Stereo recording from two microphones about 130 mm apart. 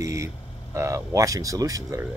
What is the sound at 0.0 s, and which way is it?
Vehicle, 25° right (ahead or behind).